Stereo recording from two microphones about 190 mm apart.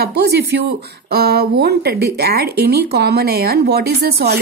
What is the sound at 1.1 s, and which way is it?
Speech, 55° right (ahead or behind).